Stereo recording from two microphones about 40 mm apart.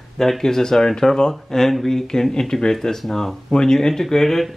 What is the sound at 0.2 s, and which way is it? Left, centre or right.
Speech, centre.